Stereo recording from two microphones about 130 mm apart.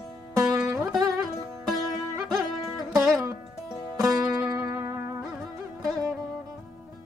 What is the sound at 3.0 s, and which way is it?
Music, 5° right (ahead or behind).